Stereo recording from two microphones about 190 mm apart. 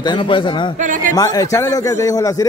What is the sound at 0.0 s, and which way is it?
Speech, 25° left (ahead or behind).